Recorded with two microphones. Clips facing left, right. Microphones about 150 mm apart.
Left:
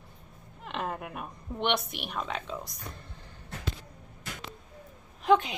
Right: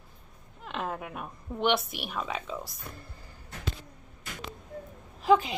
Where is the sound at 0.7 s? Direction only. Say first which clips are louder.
Even; centre (ahead or behind).